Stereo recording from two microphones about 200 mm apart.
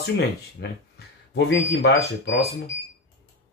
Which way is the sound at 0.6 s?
60° left (ahead or behind).